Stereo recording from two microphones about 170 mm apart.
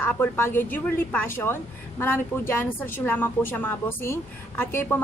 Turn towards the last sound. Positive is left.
turn(degrees=10)  # may be behind; listen again after turning